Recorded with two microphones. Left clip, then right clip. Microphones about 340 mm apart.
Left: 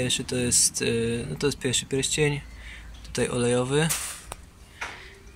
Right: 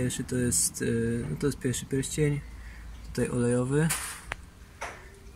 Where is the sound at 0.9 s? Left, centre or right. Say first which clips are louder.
Left 4 dB; centre.